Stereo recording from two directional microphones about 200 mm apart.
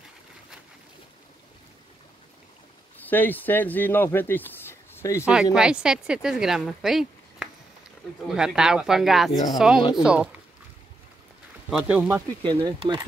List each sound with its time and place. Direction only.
3.0 s speech: 10° left (ahead or behind)
5.2 s speech: 5° right (ahead or behind)
11.7 s speech: 10° right (ahead or behind)
12.4 s speech: 20° right (ahead or behind)